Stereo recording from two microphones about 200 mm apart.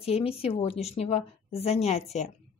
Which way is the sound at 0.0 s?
30° left (ahead or behind).